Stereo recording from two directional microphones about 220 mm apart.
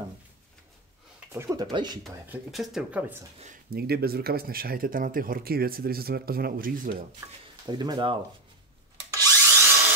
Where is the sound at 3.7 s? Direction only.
45° right (ahead or behind).